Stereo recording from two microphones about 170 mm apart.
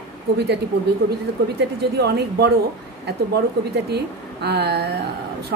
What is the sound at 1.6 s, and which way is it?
A woman's voice, 70° right (ahead or behind).